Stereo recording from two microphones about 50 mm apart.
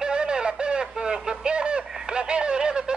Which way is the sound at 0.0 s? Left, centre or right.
Centre.